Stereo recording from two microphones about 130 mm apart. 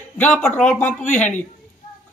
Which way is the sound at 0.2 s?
10° left (ahead or behind).